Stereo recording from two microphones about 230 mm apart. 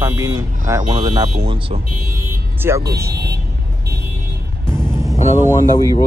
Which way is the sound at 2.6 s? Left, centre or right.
Centre.